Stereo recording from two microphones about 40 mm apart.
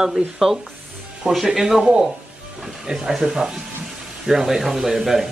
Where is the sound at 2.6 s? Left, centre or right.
Centre.